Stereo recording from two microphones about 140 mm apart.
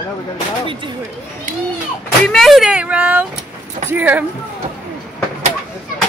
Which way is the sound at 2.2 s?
5° left (ahead or behind).